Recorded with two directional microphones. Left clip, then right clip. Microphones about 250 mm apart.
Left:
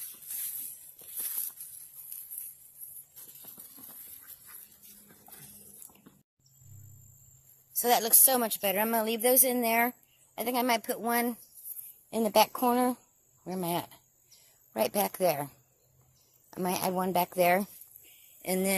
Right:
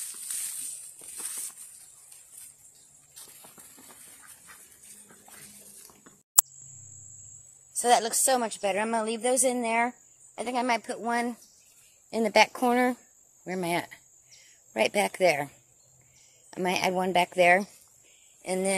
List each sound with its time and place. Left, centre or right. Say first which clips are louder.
3.4 s shuffle: right 3 dB; centre
7.8 s a woman's voice: right 3 dB; left
12.1 s speech: right 3 dB; centre
18.0 s a sound: right 1 dB; left